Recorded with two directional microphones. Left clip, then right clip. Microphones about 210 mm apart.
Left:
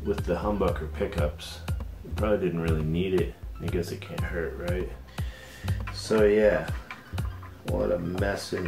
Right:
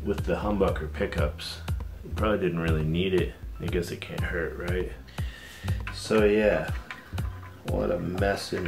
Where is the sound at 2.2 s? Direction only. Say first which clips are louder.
Even; 15° right (ahead or behind).